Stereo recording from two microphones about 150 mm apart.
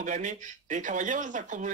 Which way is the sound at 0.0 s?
55° right (ahead or behind).